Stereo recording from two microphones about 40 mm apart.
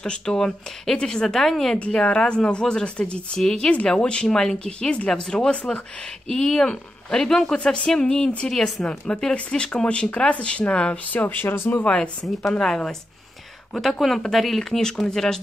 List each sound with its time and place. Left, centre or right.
0.0 s speech: centre
2.0 s speech: left
5.2 s speech: centre
5.5 s speech: left
6.2 s speech: centre
11.1 s speech: left
11.4 s speech: left
11.9 s speech: left
13.7 s speech: centre